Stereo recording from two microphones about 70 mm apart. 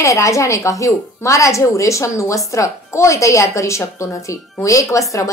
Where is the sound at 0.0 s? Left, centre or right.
Left.